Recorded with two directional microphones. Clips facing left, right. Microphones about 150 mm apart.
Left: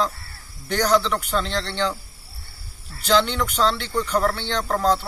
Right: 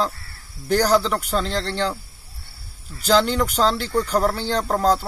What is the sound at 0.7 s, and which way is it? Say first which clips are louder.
Speech: right 2 dB; 5° right (ahead or behind).